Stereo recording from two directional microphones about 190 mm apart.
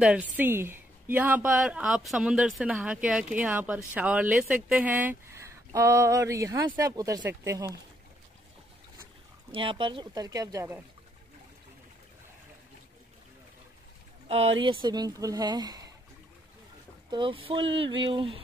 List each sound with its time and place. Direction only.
0.0 s a woman's voice: 5° right (ahead or behind)
9.5 s speech: 25° right (ahead or behind)
14.2 s speech: 30° right (ahead or behind)
17.1 s speech: 25° right (ahead or behind)